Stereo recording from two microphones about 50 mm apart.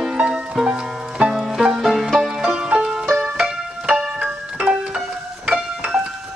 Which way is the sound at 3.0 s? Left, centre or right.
Centre.